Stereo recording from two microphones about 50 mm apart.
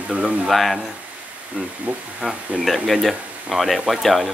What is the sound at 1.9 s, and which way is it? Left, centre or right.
Speech, right.